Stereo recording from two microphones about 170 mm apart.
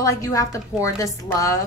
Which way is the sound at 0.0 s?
20° left (ahead or behind).